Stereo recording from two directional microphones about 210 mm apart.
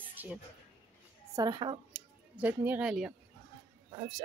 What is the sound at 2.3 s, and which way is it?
Speech, 10° right (ahead or behind).